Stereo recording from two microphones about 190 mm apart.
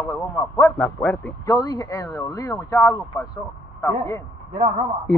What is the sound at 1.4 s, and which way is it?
Speech, 20° left (ahead or behind).